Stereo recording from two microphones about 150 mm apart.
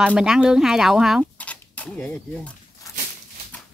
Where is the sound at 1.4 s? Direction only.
10° left (ahead or behind).